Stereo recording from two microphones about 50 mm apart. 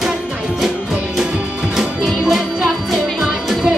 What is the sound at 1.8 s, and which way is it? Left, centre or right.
Music, centre.